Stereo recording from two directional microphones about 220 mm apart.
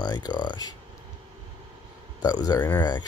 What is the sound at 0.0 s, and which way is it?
Speech, 20° left (ahead or behind).